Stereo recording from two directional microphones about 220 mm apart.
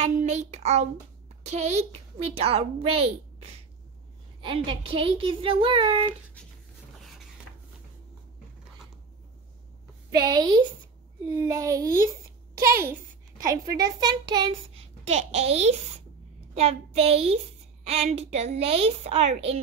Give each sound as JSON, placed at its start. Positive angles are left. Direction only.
{"t": 0.0, "sound": "a child's voice", "side_deg": -30}
{"t": 10.1, "sound": "a woman's voice", "side_deg": -20}